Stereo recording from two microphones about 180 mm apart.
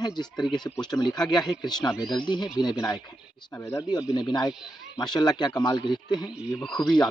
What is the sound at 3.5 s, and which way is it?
Speech, 15° left (ahead or behind).